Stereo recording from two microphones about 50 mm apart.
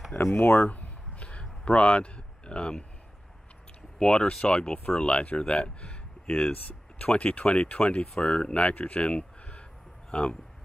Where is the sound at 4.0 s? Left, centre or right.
Left.